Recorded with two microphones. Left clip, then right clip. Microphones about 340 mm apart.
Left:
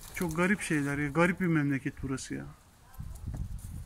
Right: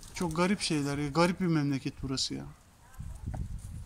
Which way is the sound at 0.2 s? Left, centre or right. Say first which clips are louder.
Even; centre.